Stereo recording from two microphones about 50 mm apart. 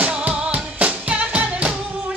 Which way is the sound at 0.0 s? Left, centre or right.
Right.